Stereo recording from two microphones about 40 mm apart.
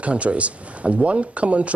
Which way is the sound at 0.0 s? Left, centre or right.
Right.